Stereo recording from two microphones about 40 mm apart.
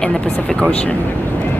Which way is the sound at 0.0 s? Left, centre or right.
Centre.